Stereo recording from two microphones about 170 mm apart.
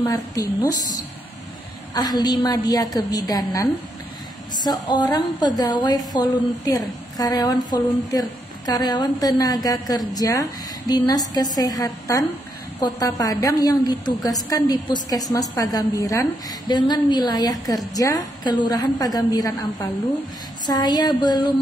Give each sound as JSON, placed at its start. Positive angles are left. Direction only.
{"t": 0.0, "sound": "a woman's voice", "side_deg": 20}
{"t": 4.6, "sound": "a woman's voice", "side_deg": 25}